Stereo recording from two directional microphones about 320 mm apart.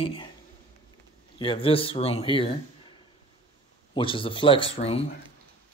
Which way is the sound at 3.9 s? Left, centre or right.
Centre.